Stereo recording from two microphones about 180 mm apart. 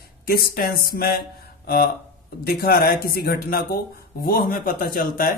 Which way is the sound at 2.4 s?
60° left (ahead or behind).